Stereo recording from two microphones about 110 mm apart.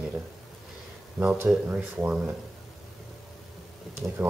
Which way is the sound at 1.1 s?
20° right (ahead or behind).